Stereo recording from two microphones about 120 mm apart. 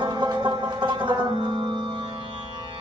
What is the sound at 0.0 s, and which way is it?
Music, 40° right (ahead or behind).